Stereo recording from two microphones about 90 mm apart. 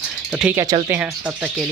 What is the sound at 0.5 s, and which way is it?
Speech, 45° right (ahead or behind).